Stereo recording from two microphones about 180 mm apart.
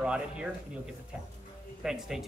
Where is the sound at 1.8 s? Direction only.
5° right (ahead or behind).